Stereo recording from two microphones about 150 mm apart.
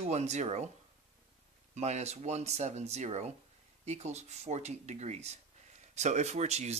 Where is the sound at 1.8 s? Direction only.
50° right (ahead or behind).